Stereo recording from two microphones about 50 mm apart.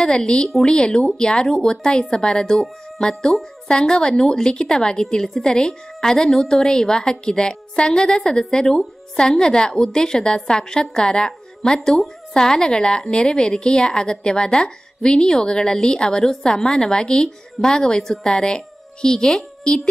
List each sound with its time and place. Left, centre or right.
0.0 s a woman's voice: centre